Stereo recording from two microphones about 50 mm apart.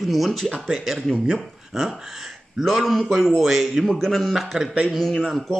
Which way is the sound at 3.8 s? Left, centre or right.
Centre.